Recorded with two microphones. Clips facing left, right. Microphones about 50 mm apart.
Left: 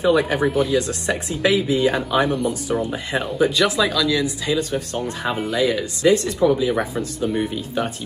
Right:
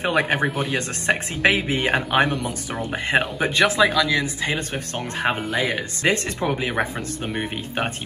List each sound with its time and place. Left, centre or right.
0.0 s speech: right
5.5 s speech: right
5.8 s speech: right